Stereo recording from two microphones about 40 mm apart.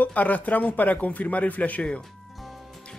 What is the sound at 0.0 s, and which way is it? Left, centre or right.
Speech, left.